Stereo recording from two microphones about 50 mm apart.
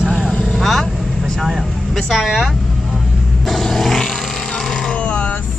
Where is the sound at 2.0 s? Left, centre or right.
Centre.